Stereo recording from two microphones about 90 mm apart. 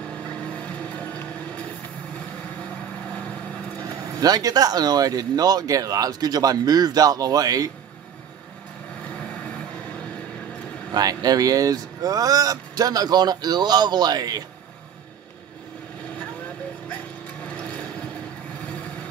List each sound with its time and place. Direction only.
0.3 s music: 15° left (ahead or behind)
4.2 s speech: 45° right (ahead or behind)
10.9 s speech: 45° right (ahead or behind)